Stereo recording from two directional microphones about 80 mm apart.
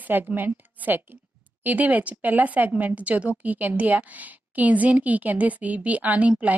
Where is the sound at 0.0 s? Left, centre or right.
Right.